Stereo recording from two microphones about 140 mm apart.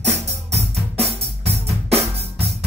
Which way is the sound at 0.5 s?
45° right (ahead or behind).